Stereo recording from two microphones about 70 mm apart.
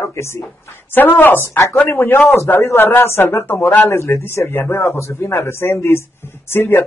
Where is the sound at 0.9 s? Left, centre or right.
Left.